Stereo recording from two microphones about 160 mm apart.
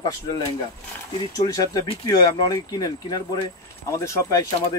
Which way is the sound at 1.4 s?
20° left (ahead or behind).